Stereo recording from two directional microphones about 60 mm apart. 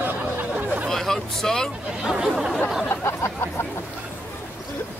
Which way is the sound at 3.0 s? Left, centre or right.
Left.